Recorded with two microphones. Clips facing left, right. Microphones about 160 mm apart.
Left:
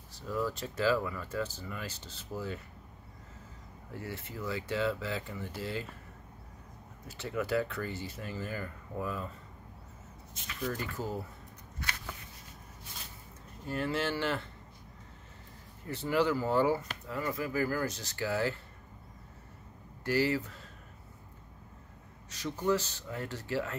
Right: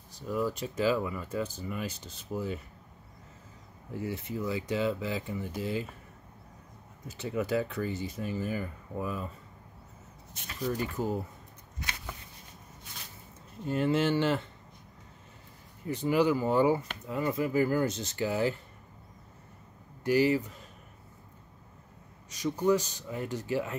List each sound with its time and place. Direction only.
0.1 s speech: 15° right (ahead or behind)
3.9 s speech: 15° right (ahead or behind)
7.1 s speech: 20° right (ahead or behind)
10.6 s speech: 15° right (ahead or behind)
13.7 s speech: 20° right (ahead or behind)
15.9 s speech: 15° right (ahead or behind)
20.0 s speech: 15° right (ahead or behind)
22.3 s speech: 15° right (ahead or behind)